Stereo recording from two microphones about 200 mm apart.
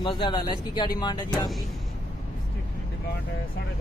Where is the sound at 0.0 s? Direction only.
25° left (ahead or behind).